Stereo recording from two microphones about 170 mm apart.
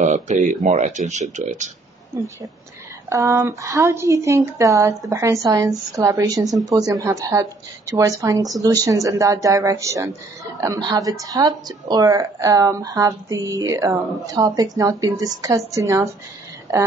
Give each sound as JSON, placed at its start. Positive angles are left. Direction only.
{"t": 0.0, "sound": "speech", "side_deg": -45}
{"t": 2.1, "sound": "a woman's voice", "side_deg": -15}